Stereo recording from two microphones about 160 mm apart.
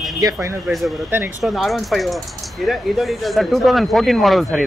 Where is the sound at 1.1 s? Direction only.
10° right (ahead or behind).